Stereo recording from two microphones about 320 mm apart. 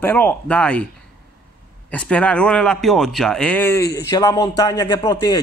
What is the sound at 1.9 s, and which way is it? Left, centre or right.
A man's voice, centre.